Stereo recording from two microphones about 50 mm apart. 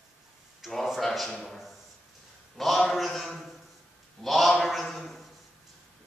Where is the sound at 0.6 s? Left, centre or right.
Centre.